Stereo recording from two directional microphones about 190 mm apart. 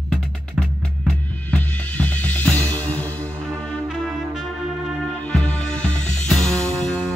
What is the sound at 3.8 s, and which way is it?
Music, centre (ahead or behind).